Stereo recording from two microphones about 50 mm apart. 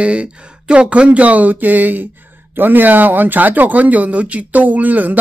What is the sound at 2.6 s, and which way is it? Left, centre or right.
Speech, right.